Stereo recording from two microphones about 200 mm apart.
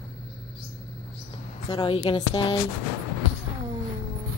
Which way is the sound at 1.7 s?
25° left (ahead or behind).